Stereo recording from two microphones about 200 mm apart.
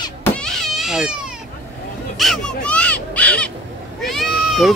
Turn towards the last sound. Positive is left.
turn(degrees=0)  # may be behind; listen again after turning